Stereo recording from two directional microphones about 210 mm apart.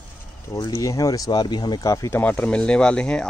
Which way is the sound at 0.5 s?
15° left (ahead or behind).